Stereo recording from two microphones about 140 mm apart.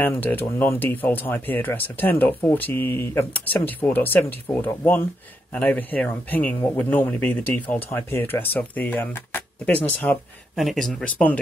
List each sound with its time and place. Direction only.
0.0 s speech: 15° left (ahead or behind)
10.5 s speech: centre (ahead or behind)